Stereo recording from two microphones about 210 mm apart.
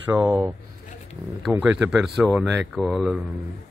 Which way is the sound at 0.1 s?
5° right (ahead or behind).